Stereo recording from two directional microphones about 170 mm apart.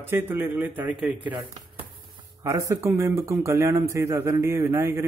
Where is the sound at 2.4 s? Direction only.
15° right (ahead or behind).